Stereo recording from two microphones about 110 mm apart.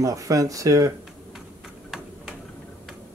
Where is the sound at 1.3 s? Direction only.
5° right (ahead or behind).